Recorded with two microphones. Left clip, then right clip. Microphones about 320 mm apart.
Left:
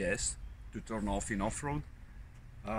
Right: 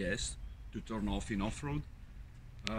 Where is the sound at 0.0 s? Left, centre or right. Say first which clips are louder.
Left 3 dB; centre.